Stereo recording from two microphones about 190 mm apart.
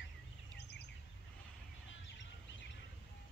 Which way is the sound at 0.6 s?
60° left (ahead or behind).